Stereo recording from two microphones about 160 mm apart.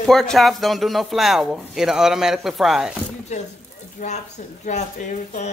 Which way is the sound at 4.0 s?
55° left (ahead or behind).